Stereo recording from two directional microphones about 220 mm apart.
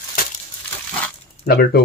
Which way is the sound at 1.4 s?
45° left (ahead or behind).